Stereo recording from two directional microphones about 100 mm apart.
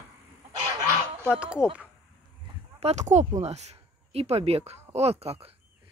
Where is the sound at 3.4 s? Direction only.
90° right.